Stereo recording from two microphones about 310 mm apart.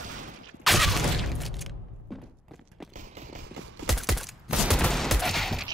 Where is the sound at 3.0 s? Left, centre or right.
Right.